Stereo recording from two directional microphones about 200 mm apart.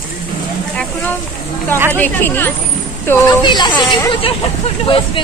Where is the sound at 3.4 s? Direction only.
25° left (ahead or behind).